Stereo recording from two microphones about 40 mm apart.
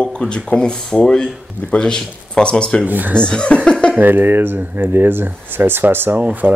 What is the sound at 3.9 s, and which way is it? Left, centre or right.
Speech, right.